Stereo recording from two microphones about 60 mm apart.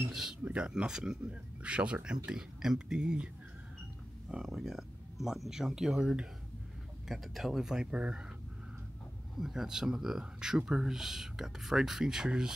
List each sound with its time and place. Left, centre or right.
0.1 s speech: centre
0.4 s speech: centre
4.6 s speech: centre
9.4 s speech: centre